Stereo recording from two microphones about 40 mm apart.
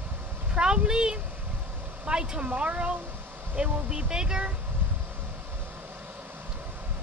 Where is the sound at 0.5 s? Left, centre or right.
Right.